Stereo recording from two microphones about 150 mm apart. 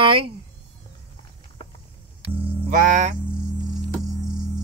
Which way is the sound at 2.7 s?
60° right (ahead or behind).